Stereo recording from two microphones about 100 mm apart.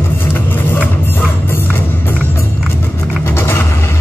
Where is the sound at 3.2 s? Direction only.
25° left (ahead or behind).